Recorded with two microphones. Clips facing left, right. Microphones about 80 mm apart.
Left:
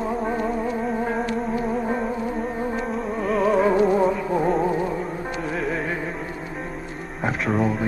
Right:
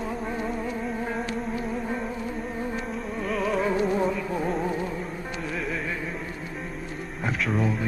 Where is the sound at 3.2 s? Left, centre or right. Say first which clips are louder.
Left 7 dB; centre.